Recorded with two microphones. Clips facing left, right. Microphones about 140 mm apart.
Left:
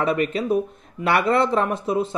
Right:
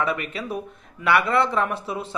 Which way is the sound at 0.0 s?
30° left (ahead or behind).